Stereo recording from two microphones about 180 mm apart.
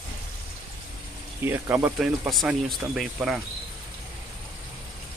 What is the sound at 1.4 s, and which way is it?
Speech, 10° right (ahead or behind).